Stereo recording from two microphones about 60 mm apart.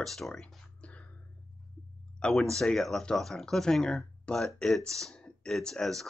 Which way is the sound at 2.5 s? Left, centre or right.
Centre.